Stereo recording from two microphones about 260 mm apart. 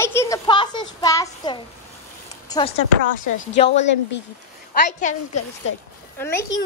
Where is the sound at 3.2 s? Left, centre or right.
Left.